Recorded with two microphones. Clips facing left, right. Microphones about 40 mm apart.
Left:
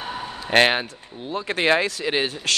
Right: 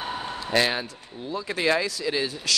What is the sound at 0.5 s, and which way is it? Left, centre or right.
Speech, left.